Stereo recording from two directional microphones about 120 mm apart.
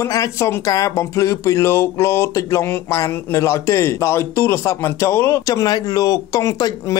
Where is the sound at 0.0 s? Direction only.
25° left (ahead or behind).